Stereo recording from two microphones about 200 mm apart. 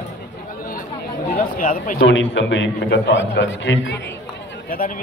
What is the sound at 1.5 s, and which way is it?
Speech, 45° left (ahead or behind).